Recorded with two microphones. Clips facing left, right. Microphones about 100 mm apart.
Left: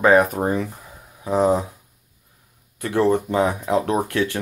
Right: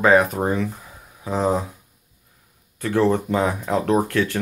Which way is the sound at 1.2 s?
15° left (ahead or behind).